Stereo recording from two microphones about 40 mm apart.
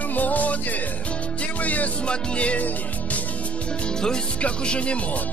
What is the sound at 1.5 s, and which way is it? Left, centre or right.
Music, left.